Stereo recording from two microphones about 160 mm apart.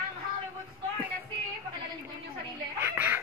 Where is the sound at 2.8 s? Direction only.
10° right (ahead or behind).